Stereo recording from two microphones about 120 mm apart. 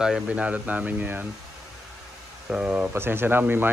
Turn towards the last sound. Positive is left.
turn(degrees=-15)  # may be behind; listen again after turning